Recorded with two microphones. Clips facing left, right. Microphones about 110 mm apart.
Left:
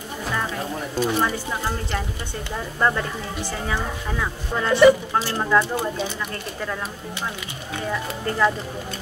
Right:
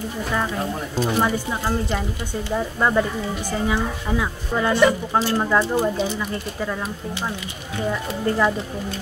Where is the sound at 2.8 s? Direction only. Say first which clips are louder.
Right 1 dB; 10° right (ahead or behind).